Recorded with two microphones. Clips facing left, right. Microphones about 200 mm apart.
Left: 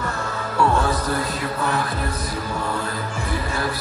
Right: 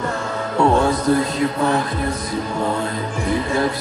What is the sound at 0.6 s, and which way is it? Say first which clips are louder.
Music: right 4 dB; 20° right (ahead or behind).